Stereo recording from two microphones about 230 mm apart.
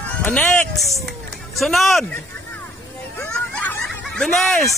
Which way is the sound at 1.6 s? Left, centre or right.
Centre.